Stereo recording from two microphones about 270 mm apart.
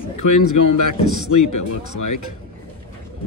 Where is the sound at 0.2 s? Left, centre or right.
Left.